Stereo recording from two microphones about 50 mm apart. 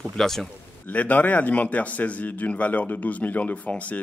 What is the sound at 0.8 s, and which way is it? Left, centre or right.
A man's voice, left.